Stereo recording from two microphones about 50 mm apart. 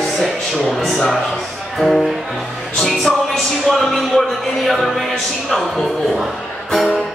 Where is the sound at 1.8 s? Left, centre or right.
Centre.